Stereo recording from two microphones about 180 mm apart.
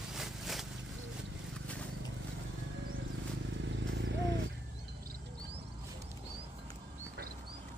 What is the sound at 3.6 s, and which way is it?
Vehicle, 80° right.